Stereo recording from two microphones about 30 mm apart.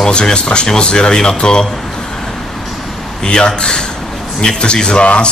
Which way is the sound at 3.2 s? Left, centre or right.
Left.